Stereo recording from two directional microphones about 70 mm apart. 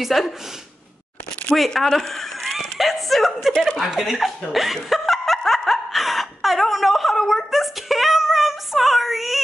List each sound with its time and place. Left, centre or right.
0.0 s a woman's voice: centre
1.5 s speech: centre
3.5 s chuckle: centre